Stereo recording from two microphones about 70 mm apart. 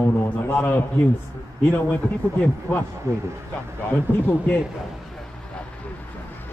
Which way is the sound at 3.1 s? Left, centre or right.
Right.